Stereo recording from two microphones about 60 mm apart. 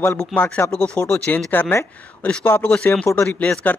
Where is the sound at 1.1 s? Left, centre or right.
Left.